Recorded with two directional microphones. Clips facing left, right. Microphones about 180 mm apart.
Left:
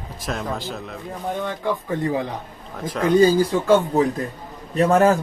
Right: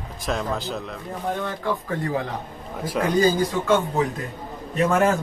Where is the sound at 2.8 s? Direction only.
10° right (ahead or behind).